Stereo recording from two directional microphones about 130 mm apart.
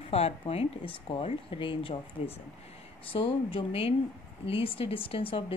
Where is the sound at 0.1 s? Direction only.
50° left (ahead or behind).